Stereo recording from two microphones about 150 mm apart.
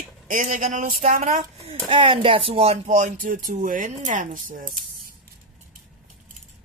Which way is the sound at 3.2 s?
65° right (ahead or behind).